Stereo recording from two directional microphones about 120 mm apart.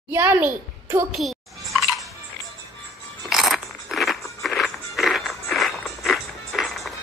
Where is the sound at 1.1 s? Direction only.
Centre (ahead or behind).